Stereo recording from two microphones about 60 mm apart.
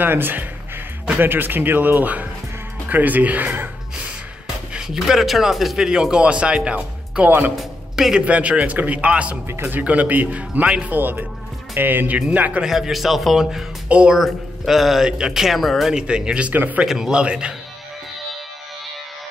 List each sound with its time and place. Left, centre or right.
0.0 s a man's voice: right
4.7 s speech: centre
7.2 s speech: right
7.9 s music: centre
8.3 s a man's voice: right
9.5 s speech: right
9.8 s a man's voice: right
12.6 s speech: centre
13.8 s speech: right
14.7 s speech: centre
15.9 s speech: centre
16.5 s a man's voice: right
16.8 s speech: centre
17.2 s speech: centre